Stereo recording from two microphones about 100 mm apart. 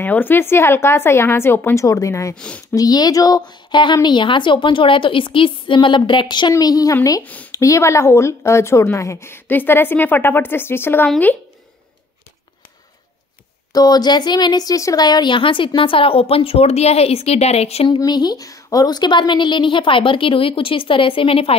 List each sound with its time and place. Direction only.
0.0 s a woman's voice: 20° left (ahead or behind)
1.9 s speech: 35° left (ahead or behind)
2.3 s speech: 10° left (ahead or behind)
2.7 s a woman's voice: 40° left (ahead or behind)
6.6 s a woman's voice: 40° left (ahead or behind); by 11.1 s 20° left (ahead or behind)
13.7 s speech: 40° left (ahead or behind); by 17.8 s 90° left
17.8 s speech: 50° left (ahead or behind); by 21.5 s 70° left (ahead or behind)